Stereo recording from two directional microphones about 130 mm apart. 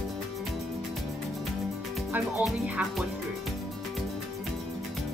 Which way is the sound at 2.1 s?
15° right (ahead or behind).